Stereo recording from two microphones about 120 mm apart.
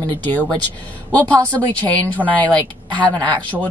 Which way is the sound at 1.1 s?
10° left (ahead or behind).